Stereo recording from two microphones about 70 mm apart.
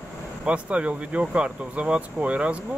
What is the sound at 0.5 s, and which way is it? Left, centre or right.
Speech, centre.